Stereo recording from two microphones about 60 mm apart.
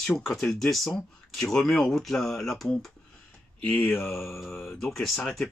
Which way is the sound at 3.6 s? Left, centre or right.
Left.